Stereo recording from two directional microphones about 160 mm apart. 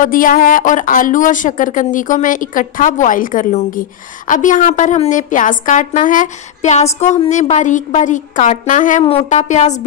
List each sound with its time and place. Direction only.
0.0 s a woman's voice: 60° left (ahead or behind)